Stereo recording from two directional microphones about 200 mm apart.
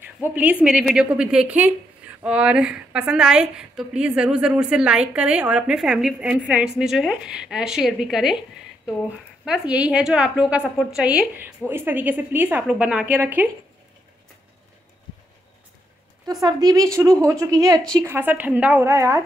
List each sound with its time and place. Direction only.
0.2 s a woman's voice: 10° right (ahead or behind)
9.4 s a woman's voice: 5° right (ahead or behind)
16.4 s a woman's voice: 20° right (ahead or behind)